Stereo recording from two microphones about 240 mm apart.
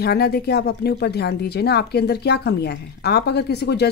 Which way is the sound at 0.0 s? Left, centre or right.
Left.